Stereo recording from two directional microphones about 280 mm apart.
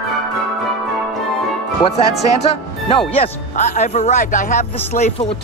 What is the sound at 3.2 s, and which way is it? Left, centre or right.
Speech, left.